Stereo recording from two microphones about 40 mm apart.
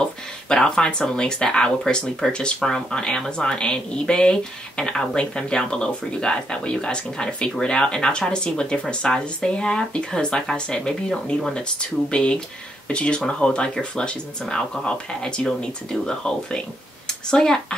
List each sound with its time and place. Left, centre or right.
0.5 s speech: centre
12.1 s speech: left
17.3 s speech: centre